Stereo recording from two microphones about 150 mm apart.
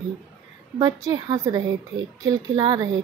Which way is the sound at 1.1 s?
25° right (ahead or behind).